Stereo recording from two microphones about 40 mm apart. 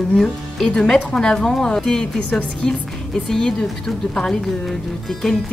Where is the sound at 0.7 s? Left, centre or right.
Centre.